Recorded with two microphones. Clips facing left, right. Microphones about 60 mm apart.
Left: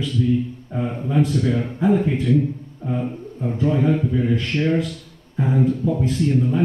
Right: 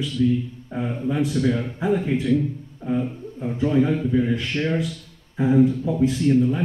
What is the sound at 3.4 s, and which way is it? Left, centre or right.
A man's voice, centre.